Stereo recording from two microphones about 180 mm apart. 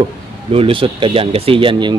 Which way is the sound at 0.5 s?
30° right (ahead or behind).